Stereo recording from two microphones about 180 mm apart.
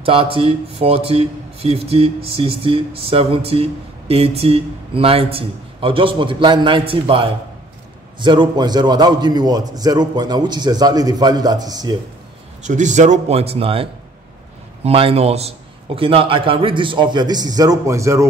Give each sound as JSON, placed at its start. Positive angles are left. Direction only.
{"t": 0.0, "sound": "a man's voice", "side_deg": -30}
{"t": 12.6, "sound": "a man's voice", "side_deg": -40}